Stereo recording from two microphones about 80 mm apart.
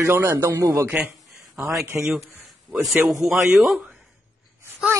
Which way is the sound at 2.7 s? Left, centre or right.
Centre.